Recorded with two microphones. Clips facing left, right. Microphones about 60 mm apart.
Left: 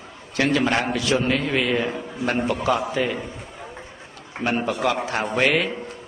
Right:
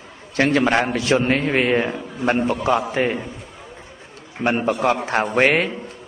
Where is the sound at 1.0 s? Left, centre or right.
Right.